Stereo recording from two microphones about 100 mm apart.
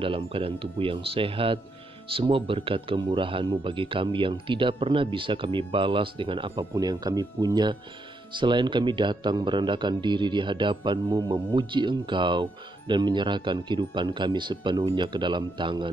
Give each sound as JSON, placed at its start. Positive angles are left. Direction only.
{"t": 0.0, "sound": "speech", "side_deg": -65}
{"t": 6.7, "sound": "a man's voice", "side_deg": -40}